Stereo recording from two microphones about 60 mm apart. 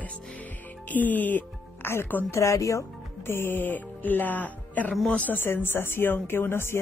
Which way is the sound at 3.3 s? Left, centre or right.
Left.